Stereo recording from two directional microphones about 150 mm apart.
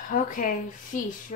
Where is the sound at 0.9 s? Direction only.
60° left (ahead or behind).